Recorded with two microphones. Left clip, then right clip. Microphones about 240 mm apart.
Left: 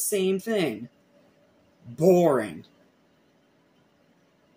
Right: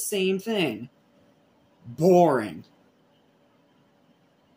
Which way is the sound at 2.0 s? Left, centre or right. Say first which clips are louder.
Right 1 dB; centre.